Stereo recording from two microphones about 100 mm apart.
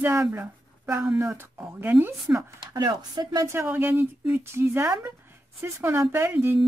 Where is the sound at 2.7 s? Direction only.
45° right (ahead or behind).